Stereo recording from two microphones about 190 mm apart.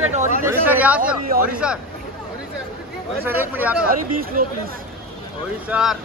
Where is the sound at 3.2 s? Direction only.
10° right (ahead or behind).